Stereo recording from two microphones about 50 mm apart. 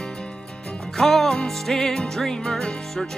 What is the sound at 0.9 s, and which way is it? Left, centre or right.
Music, centre.